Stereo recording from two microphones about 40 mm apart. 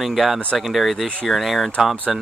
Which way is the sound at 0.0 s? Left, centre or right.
Centre.